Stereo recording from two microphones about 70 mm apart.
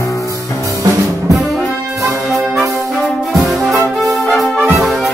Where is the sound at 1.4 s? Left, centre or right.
Centre.